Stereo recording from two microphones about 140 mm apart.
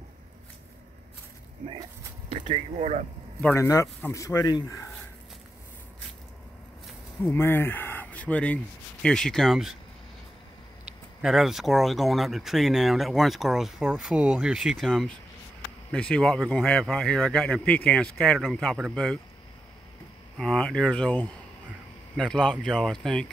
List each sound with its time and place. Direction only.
2.3 s speech: 50° right (ahead or behind)
3.5 s speech: 25° left (ahead or behind)
7.2 s speech: 15° left (ahead or behind); by 9.8 s centre (ahead or behind)
11.2 s speech: centre (ahead or behind)
20.3 s speech: 5° left (ahead or behind)